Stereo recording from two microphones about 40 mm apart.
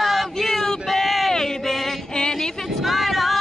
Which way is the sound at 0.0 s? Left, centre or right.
Centre.